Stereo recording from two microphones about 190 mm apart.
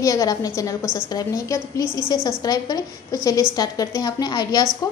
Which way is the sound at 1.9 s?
20° right (ahead or behind).